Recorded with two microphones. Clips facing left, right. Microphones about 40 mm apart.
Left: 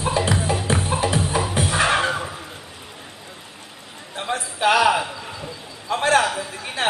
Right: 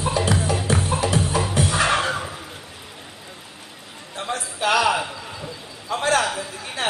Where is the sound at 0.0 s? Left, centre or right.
Centre.